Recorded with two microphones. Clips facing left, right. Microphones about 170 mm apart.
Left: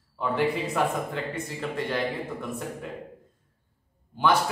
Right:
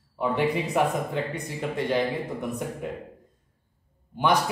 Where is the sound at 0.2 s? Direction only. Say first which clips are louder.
Right 1 dB; 20° right (ahead or behind).